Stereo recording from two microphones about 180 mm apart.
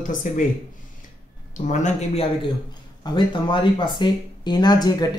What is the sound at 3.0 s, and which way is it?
Speech, 25° left (ahead or behind).